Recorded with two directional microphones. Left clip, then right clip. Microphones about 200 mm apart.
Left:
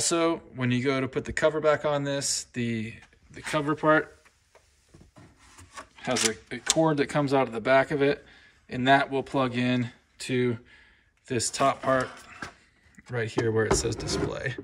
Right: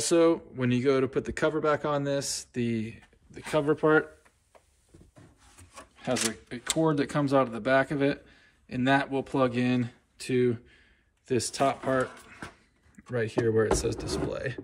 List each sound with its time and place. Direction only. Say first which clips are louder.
0.0 s speech: right 3 dB; centre (ahead or behind)
5.8 s speech: left 2 dB; centre (ahead or behind)